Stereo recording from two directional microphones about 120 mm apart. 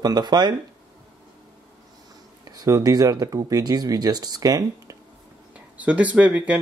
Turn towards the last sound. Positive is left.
turn(degrees=-10)  # may be behind; listen again after turning